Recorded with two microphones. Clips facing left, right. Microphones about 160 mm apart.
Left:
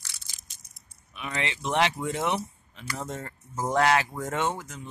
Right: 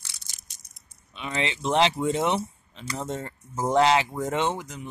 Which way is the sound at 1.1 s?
25° right (ahead or behind).